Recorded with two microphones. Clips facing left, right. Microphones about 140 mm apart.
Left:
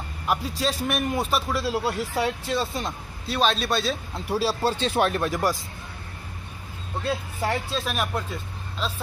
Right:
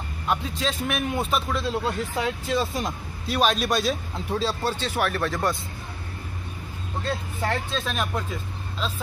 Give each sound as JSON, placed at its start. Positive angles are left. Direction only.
{"t": 0.3, "sound": "speech", "side_deg": 5}
{"t": 3.8, "sound": "speech", "side_deg": 5}
{"t": 7.1, "sound": "speech", "side_deg": 5}